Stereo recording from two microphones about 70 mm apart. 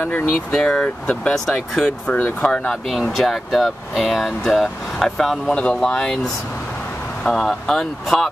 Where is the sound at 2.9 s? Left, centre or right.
Centre.